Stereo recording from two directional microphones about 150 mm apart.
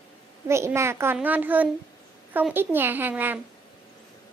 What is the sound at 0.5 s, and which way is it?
A child's voice, 20° right (ahead or behind).